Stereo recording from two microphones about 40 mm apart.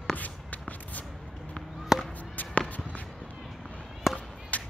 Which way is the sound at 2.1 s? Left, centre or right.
Left.